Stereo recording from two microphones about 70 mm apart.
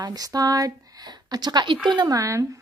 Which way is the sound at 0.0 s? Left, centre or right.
Right.